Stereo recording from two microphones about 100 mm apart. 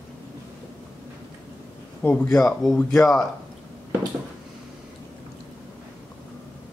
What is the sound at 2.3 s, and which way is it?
Speech, 5° left (ahead or behind).